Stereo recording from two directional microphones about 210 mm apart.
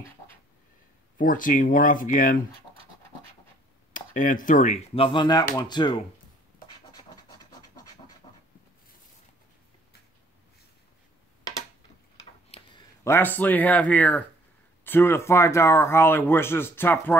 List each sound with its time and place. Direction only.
1.1 s speech: 40° left (ahead or behind)
3.9 s speech: 40° left (ahead or behind)
4.9 s speech: 25° left (ahead or behind)
12.4 s a sound: 25° left (ahead or behind)
13.0 s speech: 10° left (ahead or behind)